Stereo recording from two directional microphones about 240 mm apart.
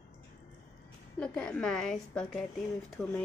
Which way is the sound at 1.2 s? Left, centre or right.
Centre.